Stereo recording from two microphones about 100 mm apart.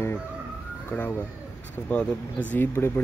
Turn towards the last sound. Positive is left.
turn(degrees=20)  # may be behind; listen again after turning